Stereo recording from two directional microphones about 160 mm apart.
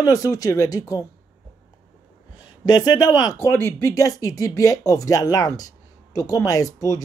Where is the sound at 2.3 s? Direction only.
25° left (ahead or behind).